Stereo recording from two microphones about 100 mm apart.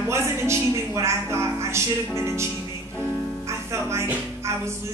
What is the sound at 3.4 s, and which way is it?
Music, 25° right (ahead or behind).